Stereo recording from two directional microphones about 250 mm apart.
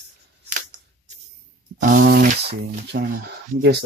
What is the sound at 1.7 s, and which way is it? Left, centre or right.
Speech, right.